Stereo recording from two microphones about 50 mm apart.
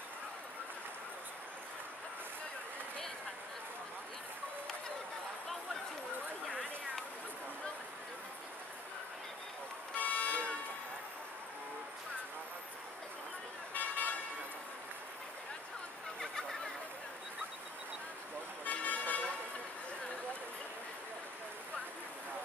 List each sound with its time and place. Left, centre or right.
9.9 s vehicle: left
13.7 s vehicle: left
16.2 s fowl: centre
18.7 s vehicle: left